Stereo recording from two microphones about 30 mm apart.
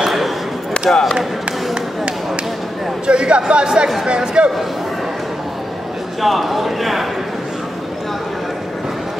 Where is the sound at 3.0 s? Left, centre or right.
Right.